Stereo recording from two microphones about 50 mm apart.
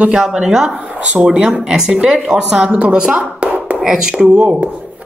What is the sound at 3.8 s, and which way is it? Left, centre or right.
Speech, centre.